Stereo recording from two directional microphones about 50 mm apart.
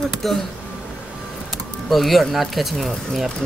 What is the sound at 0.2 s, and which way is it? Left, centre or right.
Speech, centre.